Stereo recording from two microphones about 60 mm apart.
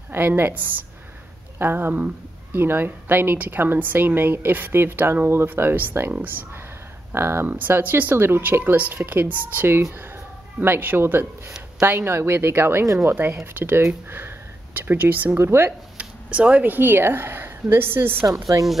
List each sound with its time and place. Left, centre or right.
0.1 s a woman's voice: right
7.2 s speech: right
7.4 s a woman's voice: right
12.8 s speech: right
13.1 s speech: right
15.3 s speech: right
16.0 s a sound: right
16.7 s a woman's voice: right